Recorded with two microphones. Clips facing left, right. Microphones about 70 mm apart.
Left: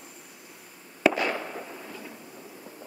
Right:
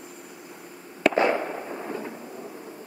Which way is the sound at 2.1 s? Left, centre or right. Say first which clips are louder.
Right 7 dB; right.